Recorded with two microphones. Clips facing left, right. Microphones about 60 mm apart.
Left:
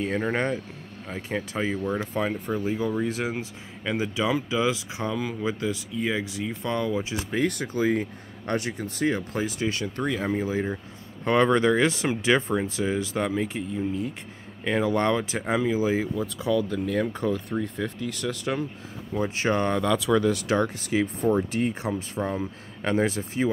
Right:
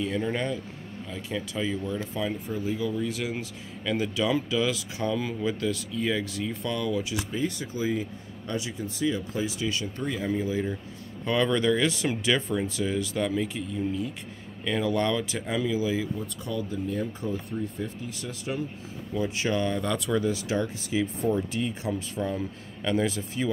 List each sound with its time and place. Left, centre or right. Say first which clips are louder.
0.0 s speech: left 3 dB; left; by 6.5 s centre
6.6 s speech: left 3 dB; left
7.2 s speech: left 4 dB; left
10.3 s speech: left 1 dB; left
16.2 s speech: left 7 dB; left
19.1 s speech: left 3 dB; left
19.7 s speech: left 5 dB; left
21.5 s speech: left 3 dB; left